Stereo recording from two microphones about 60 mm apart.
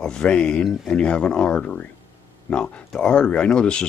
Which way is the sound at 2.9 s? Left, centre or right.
Centre.